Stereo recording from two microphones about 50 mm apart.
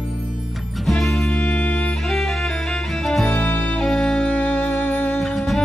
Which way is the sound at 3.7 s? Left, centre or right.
Centre.